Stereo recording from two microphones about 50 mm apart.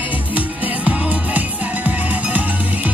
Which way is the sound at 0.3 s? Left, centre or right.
Right.